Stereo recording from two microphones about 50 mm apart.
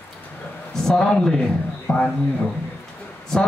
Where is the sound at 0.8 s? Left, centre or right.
Centre.